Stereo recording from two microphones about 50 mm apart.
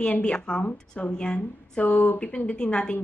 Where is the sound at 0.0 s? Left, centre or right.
Left.